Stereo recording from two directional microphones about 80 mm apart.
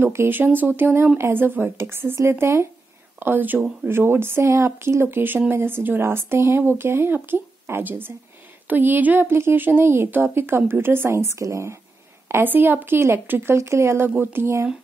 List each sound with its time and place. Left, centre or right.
0.0 s a woman's voice: right
12.3 s speech: right